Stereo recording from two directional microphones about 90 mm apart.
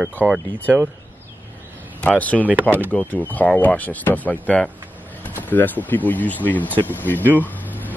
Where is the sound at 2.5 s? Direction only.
20° right (ahead or behind).